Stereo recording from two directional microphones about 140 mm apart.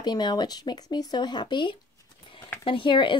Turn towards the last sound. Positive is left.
turn(degrees=35)  # may be behind; listen again after turning